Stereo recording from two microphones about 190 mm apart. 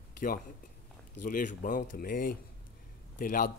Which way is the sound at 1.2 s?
45° left (ahead or behind).